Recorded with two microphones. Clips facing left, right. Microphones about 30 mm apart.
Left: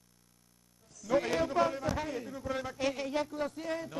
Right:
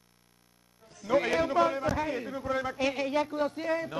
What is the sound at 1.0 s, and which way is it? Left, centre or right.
Speech, right.